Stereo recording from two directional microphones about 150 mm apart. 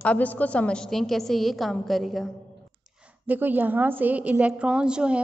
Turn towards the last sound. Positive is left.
turn(degrees=-5)  # may be behind; listen again after turning